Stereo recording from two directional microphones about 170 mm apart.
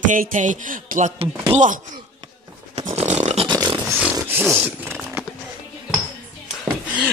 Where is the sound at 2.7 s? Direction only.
35° right (ahead or behind).